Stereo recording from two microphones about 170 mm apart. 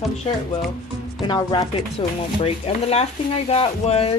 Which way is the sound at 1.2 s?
25° left (ahead or behind).